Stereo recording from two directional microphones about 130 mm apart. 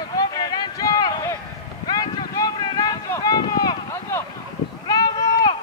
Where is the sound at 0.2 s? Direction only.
30° left (ahead or behind).